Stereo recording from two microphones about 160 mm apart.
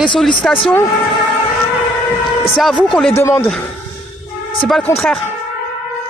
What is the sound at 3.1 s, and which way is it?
Speech, 15° left (ahead or behind).